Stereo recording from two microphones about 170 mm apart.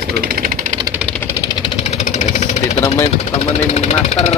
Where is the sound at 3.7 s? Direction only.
40° left (ahead or behind).